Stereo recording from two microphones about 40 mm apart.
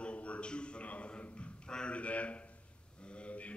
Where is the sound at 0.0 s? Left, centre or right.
Left.